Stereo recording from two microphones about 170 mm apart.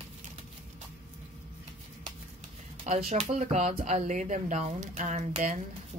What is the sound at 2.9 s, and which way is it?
Speech, 45° right (ahead or behind).